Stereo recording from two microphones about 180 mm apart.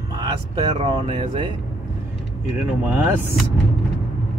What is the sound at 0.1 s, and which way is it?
Speech, 25° right (ahead or behind).